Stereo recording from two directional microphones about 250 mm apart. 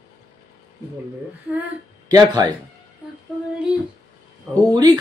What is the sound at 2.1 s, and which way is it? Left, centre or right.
Speech, centre.